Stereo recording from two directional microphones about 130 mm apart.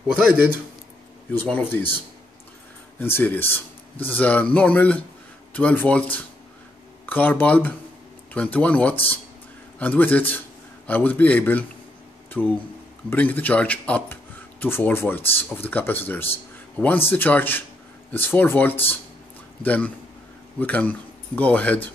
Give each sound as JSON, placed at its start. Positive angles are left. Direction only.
{"t": 0.1, "sound": "speech", "side_deg": -10}
{"t": 1.4, "sound": "speech", "side_deg": 15}
{"t": 3.0, "sound": "speech", "side_deg": 15}
{"t": 7.1, "sound": "speech", "side_deg": 15}